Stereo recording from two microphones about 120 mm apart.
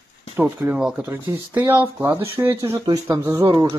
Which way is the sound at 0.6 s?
20° right (ahead or behind).